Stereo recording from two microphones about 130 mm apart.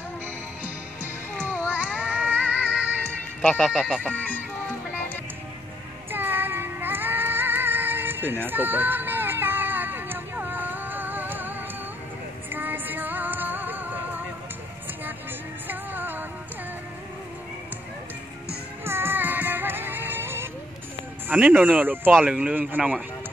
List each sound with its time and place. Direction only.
1.7 s child singing: 10° right (ahead or behind)
3.4 s speech: centre (ahead or behind)
6.1 s music: 15° right (ahead or behind)
12.5 s music: 15° right (ahead or behind)
15.6 s music: 15° right (ahead or behind)
18.9 s music: 20° right (ahead or behind)
21.3 s speech: 15° right (ahead or behind)